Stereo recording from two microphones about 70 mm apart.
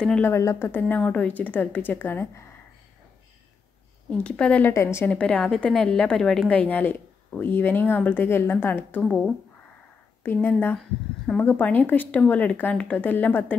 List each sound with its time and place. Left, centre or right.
0.2 s speech: left
0.7 s speech: left
4.1 s a woman's voice: centre
4.6 s speech: left
5.0 s a woman's voice: centre
6.5 s speech: left
9.0 s a woman's voice: centre
10.2 s speech: left